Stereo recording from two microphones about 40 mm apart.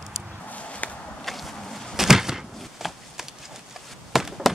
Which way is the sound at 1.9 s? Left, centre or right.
Centre.